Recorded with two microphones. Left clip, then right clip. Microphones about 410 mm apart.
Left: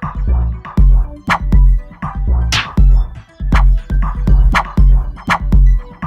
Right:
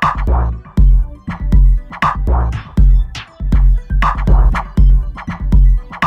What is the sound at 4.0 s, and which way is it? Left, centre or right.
Music, centre.